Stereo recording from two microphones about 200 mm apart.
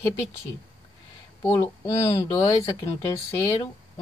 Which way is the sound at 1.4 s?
15° left (ahead or behind).